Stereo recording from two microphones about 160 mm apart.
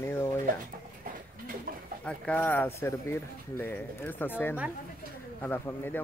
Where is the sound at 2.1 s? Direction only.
10° left (ahead or behind).